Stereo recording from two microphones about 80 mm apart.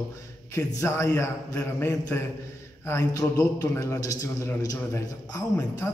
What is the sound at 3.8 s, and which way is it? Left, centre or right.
A man's voice, left.